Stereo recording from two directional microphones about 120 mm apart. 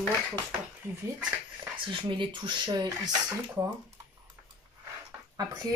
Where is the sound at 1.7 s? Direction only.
45° right (ahead or behind).